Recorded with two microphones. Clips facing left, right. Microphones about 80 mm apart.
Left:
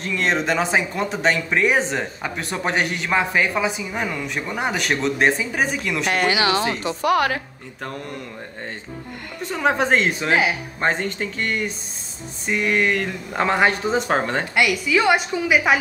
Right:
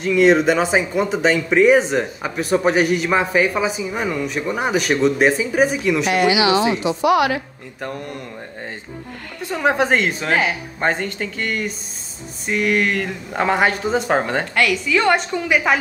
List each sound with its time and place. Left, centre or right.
0.0 s speech: centre
6.1 s a woman's voice: left
9.4 s speech: centre
14.5 s speech: centre